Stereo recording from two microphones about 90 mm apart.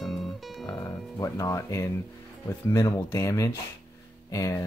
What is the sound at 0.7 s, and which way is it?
Speech, 40° left (ahead or behind).